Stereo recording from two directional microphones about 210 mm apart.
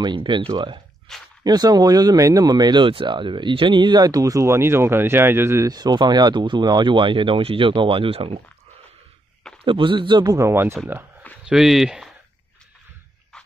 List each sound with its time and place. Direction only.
0.0 s speech: 25° right (ahead or behind)
1.1 s speech: centre (ahead or behind)
1.4 s speech: 20° right (ahead or behind)
9.7 s speech: 25° right (ahead or behind); by 12.1 s centre (ahead or behind)